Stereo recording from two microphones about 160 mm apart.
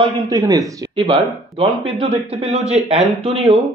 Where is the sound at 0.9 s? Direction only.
30° right (ahead or behind).